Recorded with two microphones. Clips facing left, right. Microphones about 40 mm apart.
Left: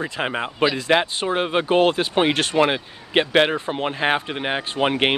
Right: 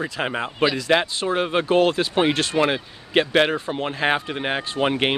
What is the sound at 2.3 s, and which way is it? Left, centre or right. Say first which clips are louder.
Speech: left 1 dB; left.